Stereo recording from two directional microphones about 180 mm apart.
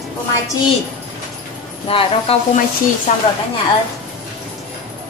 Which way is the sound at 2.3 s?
35° left (ahead or behind).